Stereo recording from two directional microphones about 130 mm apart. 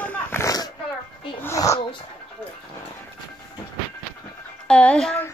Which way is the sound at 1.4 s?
25° left (ahead or behind).